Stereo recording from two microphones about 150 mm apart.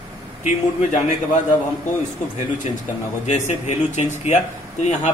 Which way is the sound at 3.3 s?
50° left (ahead or behind).